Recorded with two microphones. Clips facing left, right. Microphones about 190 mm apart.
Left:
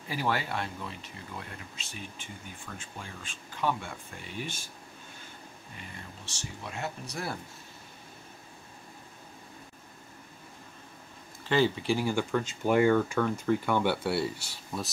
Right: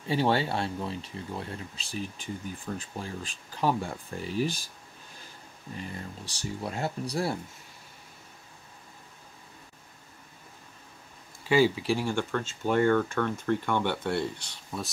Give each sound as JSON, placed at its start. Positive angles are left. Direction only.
{"t": 0.1, "sound": "speech", "side_deg": -30}
{"t": 5.9, "sound": "speech", "side_deg": -35}
{"t": 11.4, "sound": "speech", "side_deg": -10}